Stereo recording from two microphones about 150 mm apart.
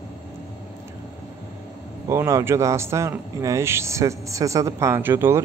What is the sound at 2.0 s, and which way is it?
A man's voice, 20° right (ahead or behind).